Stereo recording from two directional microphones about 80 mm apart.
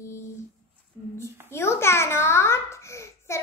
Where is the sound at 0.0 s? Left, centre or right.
Left.